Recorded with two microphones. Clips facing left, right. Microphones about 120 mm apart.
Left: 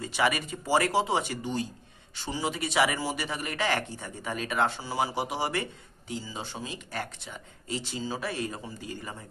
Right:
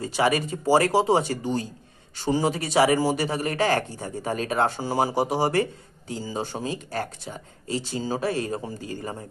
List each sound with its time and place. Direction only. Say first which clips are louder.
0.0 s speech: right 5 dB; 35° right (ahead or behind)